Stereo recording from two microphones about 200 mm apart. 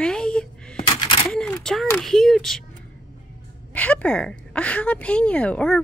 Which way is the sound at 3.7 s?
5° left (ahead or behind).